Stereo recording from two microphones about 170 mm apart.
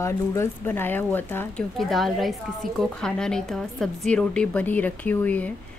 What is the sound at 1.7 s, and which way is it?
A woman's voice, centre (ahead or behind).